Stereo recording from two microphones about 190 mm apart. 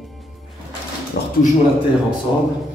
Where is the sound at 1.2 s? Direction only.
60° left (ahead or behind).